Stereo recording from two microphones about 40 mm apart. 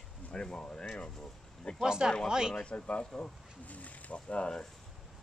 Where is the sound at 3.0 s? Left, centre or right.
Centre.